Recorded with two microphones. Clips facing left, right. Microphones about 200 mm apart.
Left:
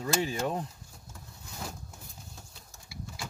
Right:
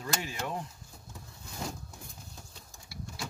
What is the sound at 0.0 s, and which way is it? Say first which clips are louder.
Speech: left 6 dB; 30° left (ahead or behind).